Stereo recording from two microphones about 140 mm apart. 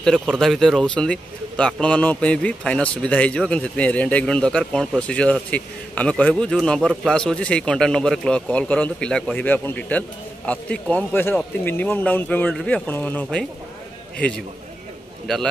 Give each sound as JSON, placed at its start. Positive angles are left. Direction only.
{"t": 0.0, "sound": "speech", "side_deg": 5}